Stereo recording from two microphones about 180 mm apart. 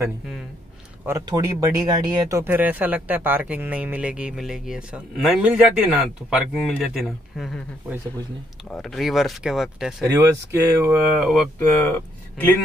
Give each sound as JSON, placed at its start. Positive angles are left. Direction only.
{"t": 1.0, "sound": "speech", "side_deg": -20}
{"t": 8.8, "sound": "speech", "side_deg": 0}
{"t": 10.0, "sound": "speech", "side_deg": -15}
{"t": 11.1, "sound": "speech", "side_deg": 5}